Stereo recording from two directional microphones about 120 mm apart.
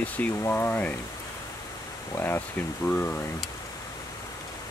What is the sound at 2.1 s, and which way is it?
Speech, 20° left (ahead or behind).